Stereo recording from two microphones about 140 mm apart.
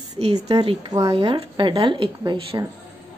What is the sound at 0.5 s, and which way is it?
Speech, 30° right (ahead or behind).